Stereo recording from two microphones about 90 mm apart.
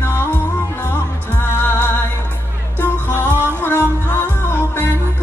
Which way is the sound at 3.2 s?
25° right (ahead or behind).